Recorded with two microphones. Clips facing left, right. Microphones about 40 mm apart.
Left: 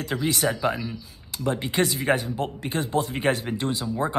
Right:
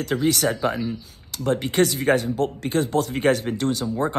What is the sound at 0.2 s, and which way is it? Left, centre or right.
Speech, left.